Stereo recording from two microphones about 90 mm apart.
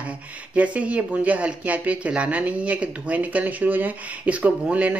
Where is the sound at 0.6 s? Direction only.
15° right (ahead or behind).